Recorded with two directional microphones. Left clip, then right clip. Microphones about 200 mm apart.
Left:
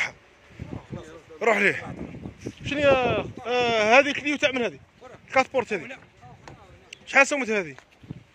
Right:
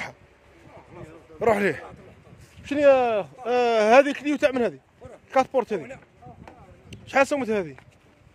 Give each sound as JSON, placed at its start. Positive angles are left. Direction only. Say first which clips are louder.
{"t": 1.4, "sound": "speech", "louder": "left 1 dB", "side_deg": -25}
{"t": 2.6, "sound": "speech", "louder": "right 3 dB", "side_deg": -40}
{"t": 6.9, "sound": "speech", "louder": "left 2 dB", "side_deg": -25}